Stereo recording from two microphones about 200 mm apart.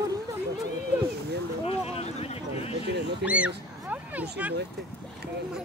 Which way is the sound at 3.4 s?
5° right (ahead or behind).